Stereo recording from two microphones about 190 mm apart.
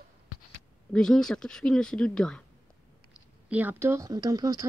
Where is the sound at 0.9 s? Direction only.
5° left (ahead or behind).